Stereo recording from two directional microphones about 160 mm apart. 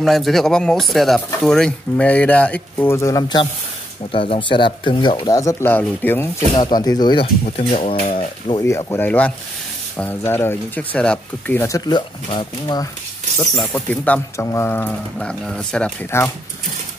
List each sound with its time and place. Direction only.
0.0 s speech: centre (ahead or behind)
6.5 s speech: 25° left (ahead or behind)
7.5 s speech: 40° left (ahead or behind)
8.6 s speech: 15° left (ahead or behind)
13.7 s speech: 10° left (ahead or behind)